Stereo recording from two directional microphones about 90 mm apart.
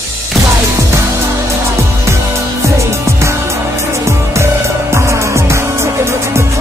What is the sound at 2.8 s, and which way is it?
Music, 35° right (ahead or behind).